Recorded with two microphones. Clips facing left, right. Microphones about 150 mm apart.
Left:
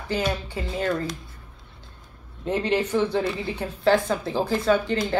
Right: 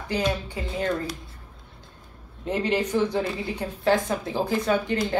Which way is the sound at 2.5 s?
10° right (ahead or behind).